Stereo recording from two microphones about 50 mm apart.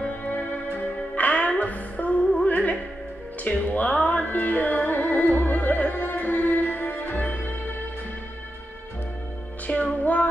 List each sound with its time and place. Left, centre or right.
0.3 s music: left
9.8 s music: left